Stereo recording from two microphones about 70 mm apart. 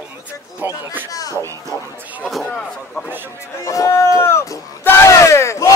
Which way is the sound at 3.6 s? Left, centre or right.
Left.